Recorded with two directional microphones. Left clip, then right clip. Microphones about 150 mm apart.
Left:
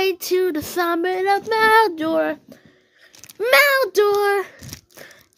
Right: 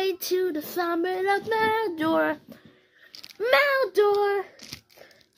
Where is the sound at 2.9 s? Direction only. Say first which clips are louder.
Left 5 dB; 30° left (ahead or behind).